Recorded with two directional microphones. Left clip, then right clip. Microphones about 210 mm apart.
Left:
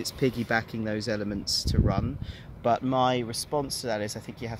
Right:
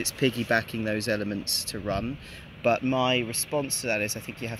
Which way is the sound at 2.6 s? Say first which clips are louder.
Even; 10° left (ahead or behind).